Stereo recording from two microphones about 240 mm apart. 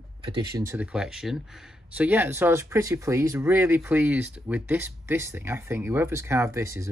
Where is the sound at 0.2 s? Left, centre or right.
Right.